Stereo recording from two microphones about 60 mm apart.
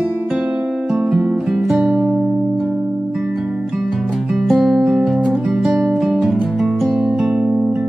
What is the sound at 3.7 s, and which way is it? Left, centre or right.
Music, centre.